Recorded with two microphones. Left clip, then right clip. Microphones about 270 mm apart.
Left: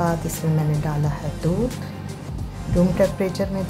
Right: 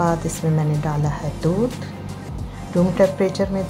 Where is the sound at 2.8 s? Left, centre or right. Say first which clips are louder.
Right 3 dB; centre.